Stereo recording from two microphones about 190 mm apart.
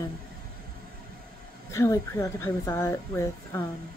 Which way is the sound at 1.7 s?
15° left (ahead or behind).